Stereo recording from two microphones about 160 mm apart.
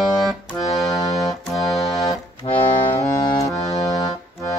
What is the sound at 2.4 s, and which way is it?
Accordion, 35° left (ahead or behind).